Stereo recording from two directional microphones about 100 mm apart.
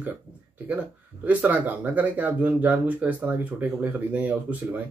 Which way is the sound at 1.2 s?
15° right (ahead or behind).